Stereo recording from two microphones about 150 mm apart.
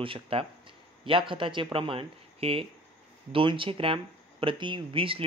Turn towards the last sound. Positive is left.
turn(degrees=-35)  # may be behind; listen again after turning